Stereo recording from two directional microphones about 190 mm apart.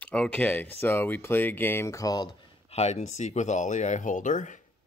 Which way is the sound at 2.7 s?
35° left (ahead or behind).